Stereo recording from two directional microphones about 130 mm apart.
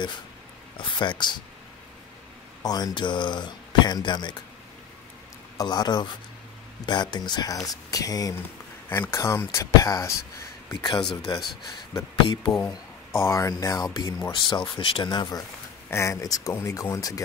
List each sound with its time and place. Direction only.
0.7 s speech: 40° left (ahead or behind)
2.6 s speech: 30° left (ahead or behind)
5.6 s speech: 30° left (ahead or behind)
13.1 s speech: 20° left (ahead or behind)
14.3 s speech: 40° left (ahead or behind)
15.9 s speech: 25° left (ahead or behind)